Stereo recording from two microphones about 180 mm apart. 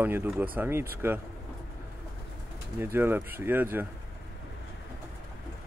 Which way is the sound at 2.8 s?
10° right (ahead or behind).